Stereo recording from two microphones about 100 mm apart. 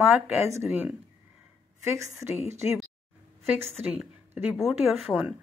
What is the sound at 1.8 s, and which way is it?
Speech, 30° right (ahead or behind).